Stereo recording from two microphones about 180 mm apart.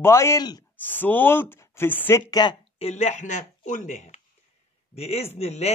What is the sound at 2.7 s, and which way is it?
A man's voice, 35° left (ahead or behind).